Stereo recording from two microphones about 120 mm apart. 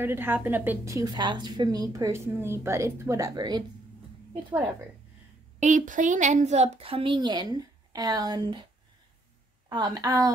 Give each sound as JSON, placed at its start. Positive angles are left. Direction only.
{"t": 0.0, "sound": "a woman's voice", "side_deg": -20}
{"t": 0.9, "sound": "a woman's voice", "side_deg": -35}
{"t": 5.6, "sound": "a woman's voice", "side_deg": -90}
{"t": 9.7, "sound": "a woman's voice", "side_deg": -35}